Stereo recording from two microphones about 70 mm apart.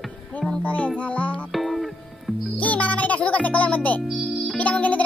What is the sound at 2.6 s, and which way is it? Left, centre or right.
A child's voice, centre.